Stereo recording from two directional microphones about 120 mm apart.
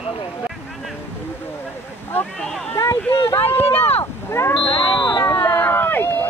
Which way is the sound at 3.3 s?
15° left (ahead or behind).